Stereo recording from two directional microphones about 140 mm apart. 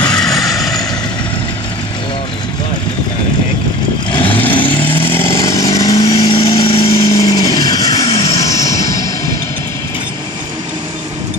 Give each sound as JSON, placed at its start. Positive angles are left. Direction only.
{"t": 0.0, "sound": "vehicle", "side_deg": 5}
{"t": 4.1, "sound": "vehicle", "side_deg": 40}
{"t": 4.4, "sound": "vehicle", "side_deg": 15}